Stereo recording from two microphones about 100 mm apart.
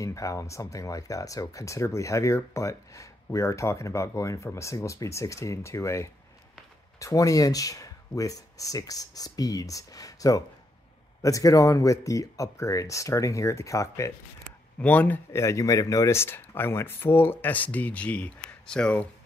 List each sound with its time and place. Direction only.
0.0 s speech: 35° left (ahead or behind)
14.8 s speech: 15° left (ahead or behind)
15.3 s speech: 30° left (ahead or behind); by 19.0 s 10° left (ahead or behind)